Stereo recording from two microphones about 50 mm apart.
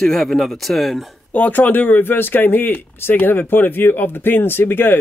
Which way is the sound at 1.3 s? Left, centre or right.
Left.